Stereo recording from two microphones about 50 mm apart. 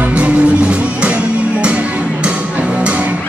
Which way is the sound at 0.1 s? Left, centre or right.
Right.